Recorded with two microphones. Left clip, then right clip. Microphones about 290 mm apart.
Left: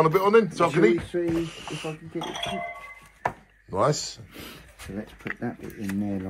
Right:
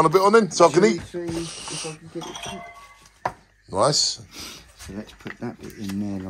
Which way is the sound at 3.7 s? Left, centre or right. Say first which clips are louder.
Right 4 dB; centre.